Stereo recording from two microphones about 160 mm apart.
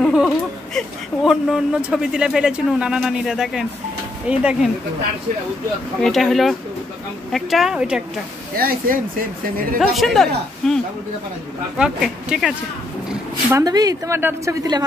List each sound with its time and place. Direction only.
0.0 s a sound: centre (ahead or behind)
0.7 s speech: centre (ahead or behind)
5.9 s speech: centre (ahead or behind)
8.5 s speech: 65° right (ahead or behind)
9.8 s speech: centre (ahead or behind)
11.8 s speech: 5° right (ahead or behind)
13.5 s a woman's voice: 20° right (ahead or behind)